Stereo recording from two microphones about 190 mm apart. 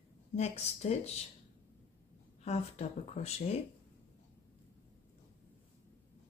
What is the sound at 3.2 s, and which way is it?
Speech, 35° left (ahead or behind).